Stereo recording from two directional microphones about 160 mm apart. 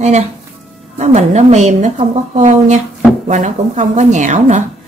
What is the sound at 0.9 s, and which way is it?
Speech, 45° right (ahead or behind).